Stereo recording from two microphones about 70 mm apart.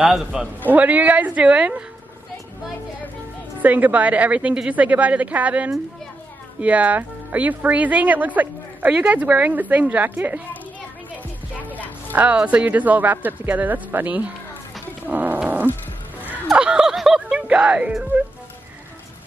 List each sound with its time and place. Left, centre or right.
0.1 s a man's voice: centre
0.7 s a woman's voice: right
3.6 s a woman's voice: right
11.6 s music: left
12.1 s a woman's voice: right
15.0 s a sound: right
16.5 s a sound: centre
17.4 s speech: centre